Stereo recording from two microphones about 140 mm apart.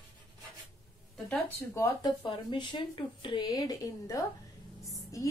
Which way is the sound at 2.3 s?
30° left (ahead or behind).